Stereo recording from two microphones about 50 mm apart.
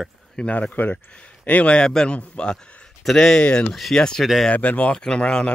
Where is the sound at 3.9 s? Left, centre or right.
Centre.